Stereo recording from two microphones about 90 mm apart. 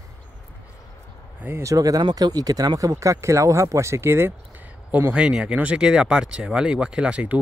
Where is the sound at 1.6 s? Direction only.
40° right (ahead or behind).